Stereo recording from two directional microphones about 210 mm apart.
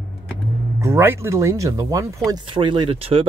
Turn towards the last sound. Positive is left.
turn(degrees=-25)  # may be behind; listen again after turning